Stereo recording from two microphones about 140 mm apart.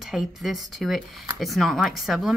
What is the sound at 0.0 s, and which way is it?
A woman's voice, centre (ahead or behind).